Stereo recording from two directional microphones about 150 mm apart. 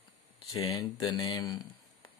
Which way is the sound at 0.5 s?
25° left (ahead or behind).